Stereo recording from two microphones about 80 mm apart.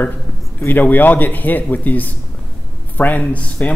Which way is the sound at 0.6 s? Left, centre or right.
Left.